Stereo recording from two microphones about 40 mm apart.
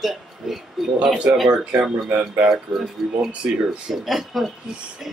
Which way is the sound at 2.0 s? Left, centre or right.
Right.